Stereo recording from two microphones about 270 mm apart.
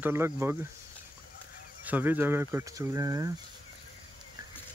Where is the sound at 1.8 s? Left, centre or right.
Centre.